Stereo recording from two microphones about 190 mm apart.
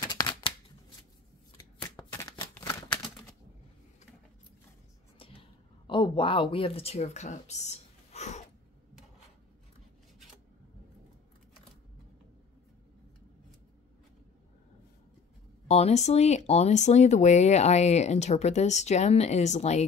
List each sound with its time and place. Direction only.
0.0 s scissors: 20° left (ahead or behind)
1.8 s shuffling cards: 20° left (ahead or behind)
2.5 s typewriter: 15° left (ahead or behind)
5.2 s a sound: 30° left (ahead or behind)
15.7 s speech: 35° left (ahead or behind)